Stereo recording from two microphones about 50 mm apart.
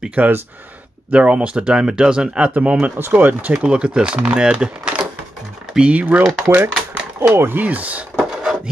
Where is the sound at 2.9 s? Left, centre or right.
Right.